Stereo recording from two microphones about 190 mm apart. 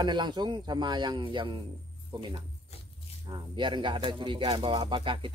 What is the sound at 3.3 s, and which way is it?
Speech, 25° right (ahead or behind).